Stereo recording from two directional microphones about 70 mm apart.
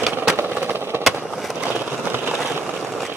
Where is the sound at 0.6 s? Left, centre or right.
Right.